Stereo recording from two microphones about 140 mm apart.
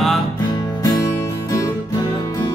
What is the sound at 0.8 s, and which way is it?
Music, 25° left (ahead or behind).